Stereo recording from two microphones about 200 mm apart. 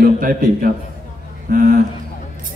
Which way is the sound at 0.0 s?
45° right (ahead or behind).